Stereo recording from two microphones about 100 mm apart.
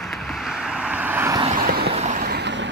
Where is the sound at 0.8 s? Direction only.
15° right (ahead or behind).